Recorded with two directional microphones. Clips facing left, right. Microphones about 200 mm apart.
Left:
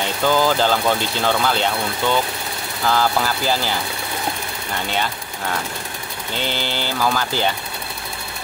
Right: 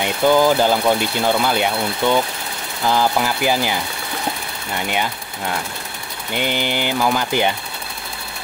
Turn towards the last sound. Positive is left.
turn(degrees=-15)  # may be behind; listen again after turning